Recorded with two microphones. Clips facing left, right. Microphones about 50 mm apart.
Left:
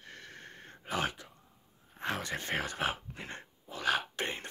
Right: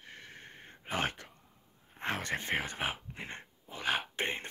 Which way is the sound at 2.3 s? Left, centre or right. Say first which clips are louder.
Even; right.